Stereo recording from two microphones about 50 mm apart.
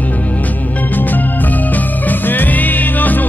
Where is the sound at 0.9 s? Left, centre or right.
Left.